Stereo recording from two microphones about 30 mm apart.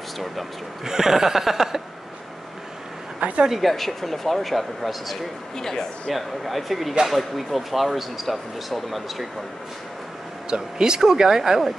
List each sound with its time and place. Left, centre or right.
0.8 s speech: centre
3.2 s a sound: right
3.5 s speech: centre
5.6 s speech: centre
6.1 s speech: centre
10.5 s speech: right